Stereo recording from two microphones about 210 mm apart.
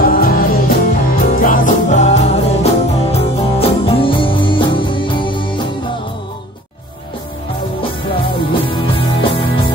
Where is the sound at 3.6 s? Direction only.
25° left (ahead or behind).